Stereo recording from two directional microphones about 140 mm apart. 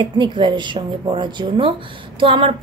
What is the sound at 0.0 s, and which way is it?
A woman's voice, 35° right (ahead or behind).